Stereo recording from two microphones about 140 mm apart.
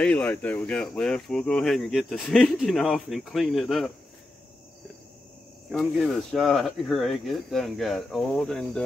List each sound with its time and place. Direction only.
0.0 s speech: 10° left (ahead or behind)
5.7 s speech: centre (ahead or behind)